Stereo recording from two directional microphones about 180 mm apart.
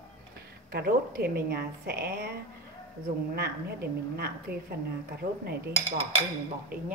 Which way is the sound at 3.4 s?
60° right (ahead or behind).